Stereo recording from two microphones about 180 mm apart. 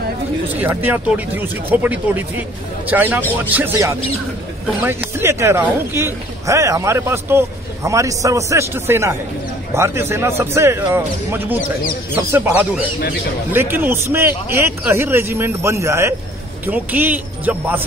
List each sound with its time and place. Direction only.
0.5 s speech: 10° right (ahead or behind)